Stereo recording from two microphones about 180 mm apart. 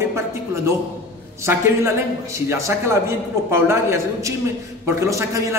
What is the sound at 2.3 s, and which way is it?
A man's voice, 15° right (ahead or behind).